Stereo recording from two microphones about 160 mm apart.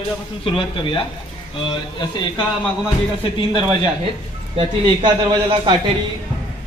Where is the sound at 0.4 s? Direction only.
35° left (ahead or behind).